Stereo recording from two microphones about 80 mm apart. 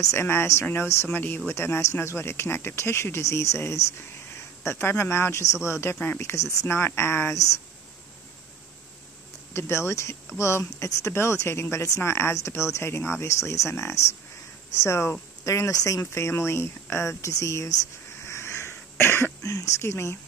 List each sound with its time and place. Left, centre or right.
0.0 s speech: left
9.5 s speech: left
18.2 s cough: left
19.4 s speech: left